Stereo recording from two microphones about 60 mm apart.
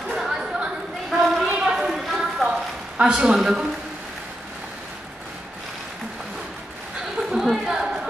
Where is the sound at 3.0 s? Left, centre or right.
Centre.